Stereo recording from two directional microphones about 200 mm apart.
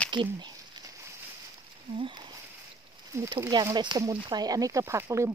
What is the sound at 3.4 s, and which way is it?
Speech, 20° right (ahead or behind).